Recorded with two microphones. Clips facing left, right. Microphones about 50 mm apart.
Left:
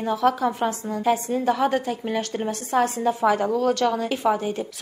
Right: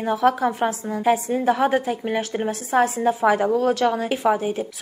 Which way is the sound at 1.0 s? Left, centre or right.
Centre.